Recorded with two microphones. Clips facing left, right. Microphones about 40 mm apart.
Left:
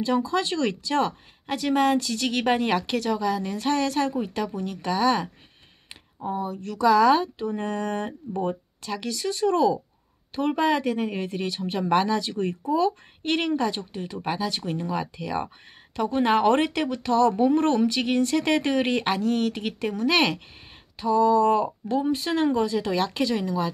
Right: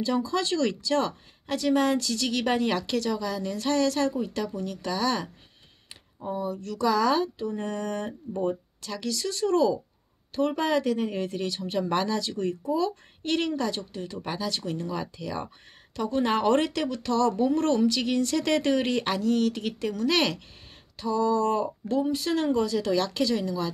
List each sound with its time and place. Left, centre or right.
0.0 s speech: left
6.3 s speech: left